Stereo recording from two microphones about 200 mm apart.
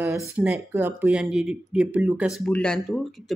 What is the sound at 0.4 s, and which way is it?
Speech, 10° right (ahead or behind).